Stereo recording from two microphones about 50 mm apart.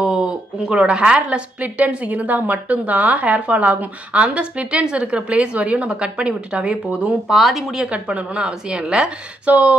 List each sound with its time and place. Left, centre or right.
0.7 s a woman's voice: right
7.2 s speech: centre
7.7 s a woman's voice: right
9.5 s a woman's voice: right